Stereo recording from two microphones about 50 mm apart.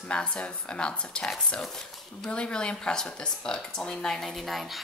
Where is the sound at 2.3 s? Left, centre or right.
Centre.